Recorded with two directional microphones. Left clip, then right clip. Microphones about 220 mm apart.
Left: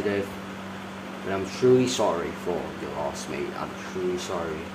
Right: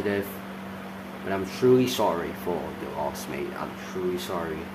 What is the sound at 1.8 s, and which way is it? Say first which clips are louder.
Speech: even; 10° right (ahead or behind).